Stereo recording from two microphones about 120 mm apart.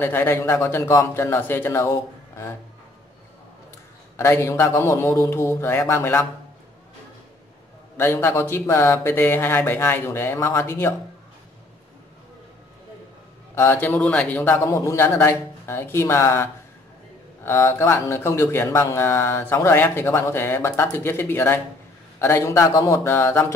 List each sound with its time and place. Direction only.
0.0 s speech: 15° left (ahead or behind)
4.2 s speech: 20° left (ahead or behind)
8.0 s speech: 20° left (ahead or behind)
13.6 s speech: 20° left (ahead or behind)